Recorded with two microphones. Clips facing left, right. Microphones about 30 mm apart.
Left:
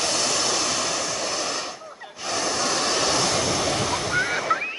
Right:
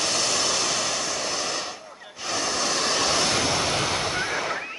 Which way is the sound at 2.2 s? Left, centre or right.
Centre.